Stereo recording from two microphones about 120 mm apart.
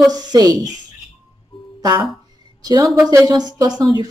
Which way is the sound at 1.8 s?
40° right (ahead or behind).